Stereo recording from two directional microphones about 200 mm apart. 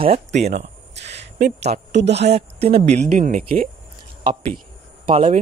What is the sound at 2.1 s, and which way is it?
Speech, 30° right (ahead or behind).